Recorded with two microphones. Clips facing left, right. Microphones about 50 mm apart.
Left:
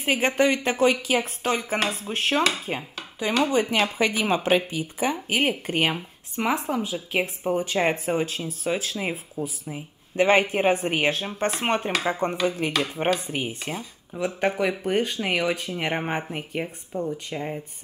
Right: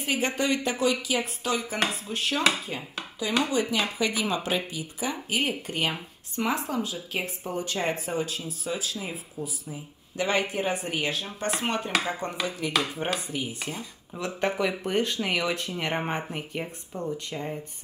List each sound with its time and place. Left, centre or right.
0.0 s speech: left
2.7 s dishes: left
3.8 s speech: left
6.3 s speech: left
13.7 s speech: centre
16.6 s speech: centre
17.3 s speech: centre